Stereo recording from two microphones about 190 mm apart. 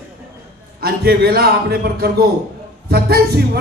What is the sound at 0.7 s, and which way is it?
A man's voice, 55° right (ahead or behind).